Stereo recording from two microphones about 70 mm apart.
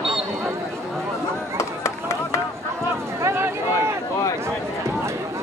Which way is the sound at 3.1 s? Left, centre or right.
Right.